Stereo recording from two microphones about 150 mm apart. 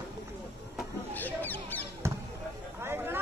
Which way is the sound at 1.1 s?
10° left (ahead or behind).